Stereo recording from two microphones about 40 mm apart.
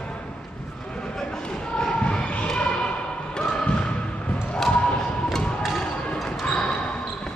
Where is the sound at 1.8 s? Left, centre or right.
Centre.